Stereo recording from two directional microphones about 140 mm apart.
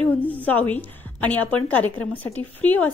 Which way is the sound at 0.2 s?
10° left (ahead or behind).